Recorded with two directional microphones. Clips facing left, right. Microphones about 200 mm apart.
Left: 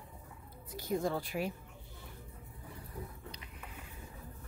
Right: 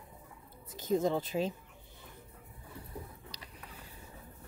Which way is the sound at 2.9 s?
35° right (ahead or behind).